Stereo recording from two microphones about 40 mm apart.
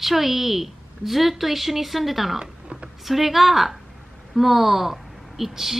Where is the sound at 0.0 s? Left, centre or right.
Centre.